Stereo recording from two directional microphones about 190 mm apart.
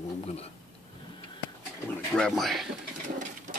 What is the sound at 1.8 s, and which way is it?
Speech, 5° left (ahead or behind).